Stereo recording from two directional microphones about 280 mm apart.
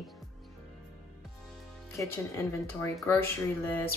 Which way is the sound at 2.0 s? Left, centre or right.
Centre.